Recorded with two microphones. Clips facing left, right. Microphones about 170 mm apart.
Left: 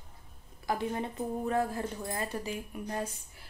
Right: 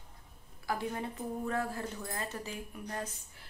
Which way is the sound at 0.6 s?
20° left (ahead or behind).